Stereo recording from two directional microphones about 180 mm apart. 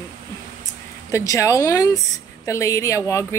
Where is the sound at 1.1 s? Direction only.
15° left (ahead or behind).